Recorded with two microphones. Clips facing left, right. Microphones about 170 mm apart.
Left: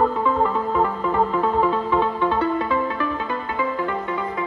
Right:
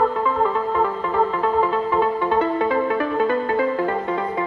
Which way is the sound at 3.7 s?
35° right (ahead or behind).